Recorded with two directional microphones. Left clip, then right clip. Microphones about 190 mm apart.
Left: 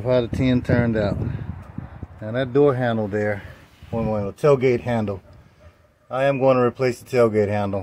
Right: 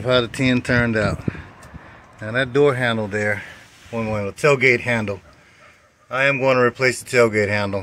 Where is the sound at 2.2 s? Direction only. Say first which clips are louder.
Right 1 dB; 5° left (ahead or behind).